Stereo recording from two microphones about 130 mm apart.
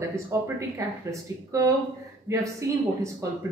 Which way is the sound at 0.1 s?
20° right (ahead or behind).